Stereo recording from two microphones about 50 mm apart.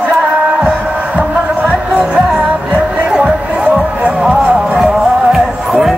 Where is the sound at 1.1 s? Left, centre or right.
Right.